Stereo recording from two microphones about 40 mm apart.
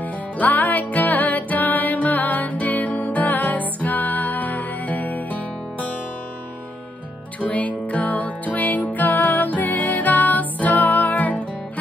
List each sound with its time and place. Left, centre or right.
0.0 s music: left
7.3 s music: left